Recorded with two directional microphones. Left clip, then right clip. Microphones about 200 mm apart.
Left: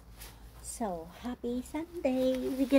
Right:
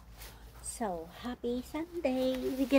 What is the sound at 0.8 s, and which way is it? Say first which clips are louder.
A child's voice: even; centre (ahead or behind).